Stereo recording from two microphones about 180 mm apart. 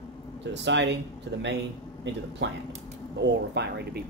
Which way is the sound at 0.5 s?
85° right.